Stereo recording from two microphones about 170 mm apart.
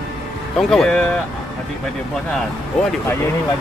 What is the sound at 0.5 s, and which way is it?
Speech, 5° left (ahead or behind).